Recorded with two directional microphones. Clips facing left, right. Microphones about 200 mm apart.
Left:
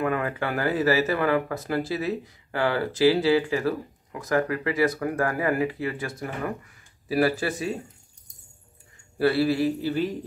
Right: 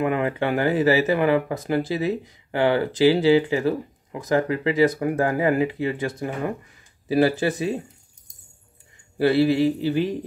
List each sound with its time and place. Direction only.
0.0 s speech: 20° right (ahead or behind)
9.2 s speech: 20° right (ahead or behind)